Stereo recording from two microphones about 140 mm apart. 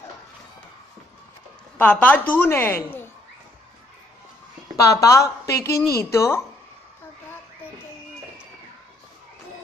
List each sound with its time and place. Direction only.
1.8 s a woman's voice: 10° left (ahead or behind)
4.7 s a woman's voice: 25° left (ahead or behind)